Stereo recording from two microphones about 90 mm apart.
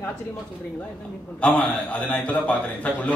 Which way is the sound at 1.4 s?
15° left (ahead or behind).